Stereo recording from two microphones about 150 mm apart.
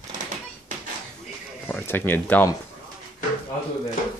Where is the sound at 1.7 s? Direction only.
15° left (ahead or behind).